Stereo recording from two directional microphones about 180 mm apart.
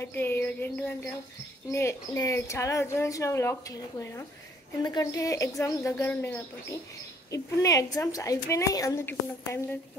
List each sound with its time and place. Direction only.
0.0 s a woman's voice: 10° left (ahead or behind)
4.8 s a woman's voice: 20° left (ahead or behind)